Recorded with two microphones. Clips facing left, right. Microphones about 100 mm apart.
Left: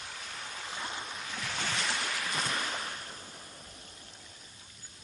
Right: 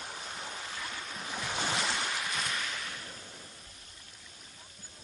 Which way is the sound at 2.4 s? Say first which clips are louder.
Left 2 dB; 35° left (ahead or behind).